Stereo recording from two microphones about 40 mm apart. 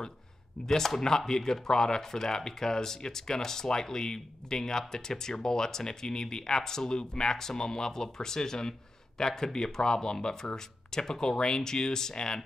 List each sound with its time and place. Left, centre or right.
0.7 s speech: centre